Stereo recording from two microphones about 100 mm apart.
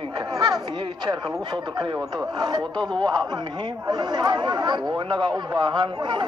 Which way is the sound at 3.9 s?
45° right (ahead or behind).